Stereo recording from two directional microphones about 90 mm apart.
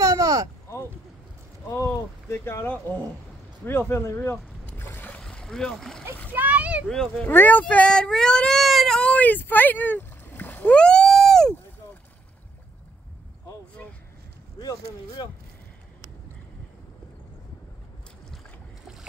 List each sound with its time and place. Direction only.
0.0 s a sound: 40° right (ahead or behind)
1.7 s speech: 35° left (ahead or behind)
5.2 s vehicle: 5° left (ahead or behind)
6.3 s speech: 15° right (ahead or behind)
6.9 s speech: 5° left (ahead or behind)
7.2 s speech: 20° left (ahead or behind); by 11.5 s 5° left (ahead or behind)
14.6 s speech: 50° left (ahead or behind)